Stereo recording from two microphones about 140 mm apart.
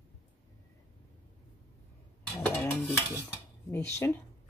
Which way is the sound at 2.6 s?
10° left (ahead or behind).